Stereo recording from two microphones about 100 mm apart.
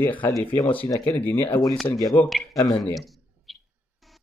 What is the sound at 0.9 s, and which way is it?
Speech, 20° left (ahead or behind).